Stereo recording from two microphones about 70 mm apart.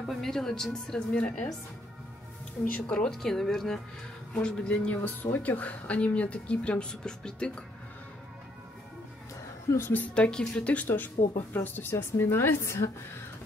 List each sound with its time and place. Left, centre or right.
0.0 s a woman's voice: centre
2.6 s a woman's voice: centre
3.2 s a woman's voice: centre
9.7 s a woman's voice: left
9.9 s a woman's voice: centre; by 12.9 s left